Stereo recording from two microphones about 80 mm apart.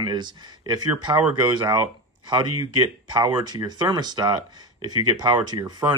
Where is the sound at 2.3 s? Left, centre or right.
Right.